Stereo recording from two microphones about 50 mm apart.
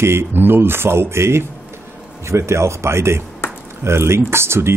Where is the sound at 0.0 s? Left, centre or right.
Right.